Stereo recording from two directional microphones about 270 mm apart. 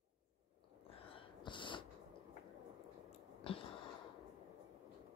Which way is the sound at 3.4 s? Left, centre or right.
Centre.